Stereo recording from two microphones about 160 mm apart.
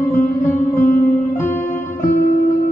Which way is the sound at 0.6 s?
55° left (ahead or behind).